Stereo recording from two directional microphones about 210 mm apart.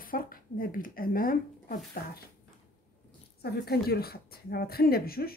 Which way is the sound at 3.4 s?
50° left (ahead or behind).